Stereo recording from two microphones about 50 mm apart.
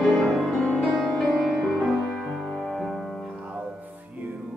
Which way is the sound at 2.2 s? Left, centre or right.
Centre.